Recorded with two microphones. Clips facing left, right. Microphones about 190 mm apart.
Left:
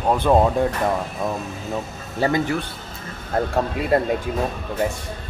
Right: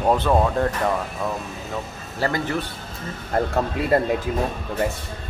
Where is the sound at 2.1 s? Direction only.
15° left (ahead or behind).